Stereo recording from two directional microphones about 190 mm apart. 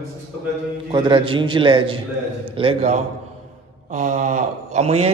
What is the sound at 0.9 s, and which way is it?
A man's voice, 25° right (ahead or behind).